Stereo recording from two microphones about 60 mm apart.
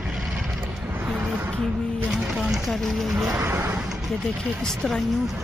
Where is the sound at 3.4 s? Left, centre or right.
Right.